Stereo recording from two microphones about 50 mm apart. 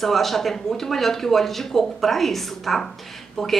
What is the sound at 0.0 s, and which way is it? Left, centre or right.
Speech, centre.